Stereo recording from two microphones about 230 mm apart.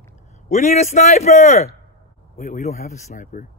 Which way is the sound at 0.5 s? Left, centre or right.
Left.